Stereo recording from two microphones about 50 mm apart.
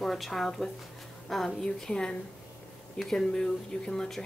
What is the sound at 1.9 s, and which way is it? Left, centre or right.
A woman's voice, centre.